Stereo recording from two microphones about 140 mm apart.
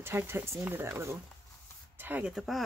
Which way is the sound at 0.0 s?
15° right (ahead or behind).